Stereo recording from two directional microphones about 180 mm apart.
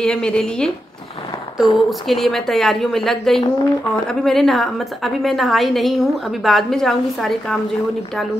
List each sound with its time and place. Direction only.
0.0 s a woman's voice: 5° left (ahead or behind)